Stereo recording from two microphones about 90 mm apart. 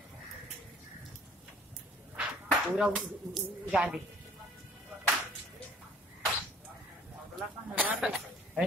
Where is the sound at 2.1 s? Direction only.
15° right (ahead or behind).